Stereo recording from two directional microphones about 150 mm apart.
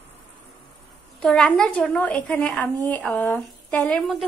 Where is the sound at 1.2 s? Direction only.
5° left (ahead or behind).